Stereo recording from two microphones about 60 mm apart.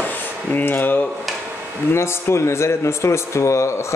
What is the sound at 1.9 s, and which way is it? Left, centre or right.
Speech, left.